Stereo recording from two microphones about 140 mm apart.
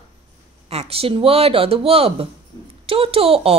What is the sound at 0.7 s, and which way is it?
A woman's voice, 45° right (ahead or behind).